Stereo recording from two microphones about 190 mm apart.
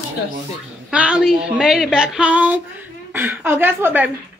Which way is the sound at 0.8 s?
5° right (ahead or behind).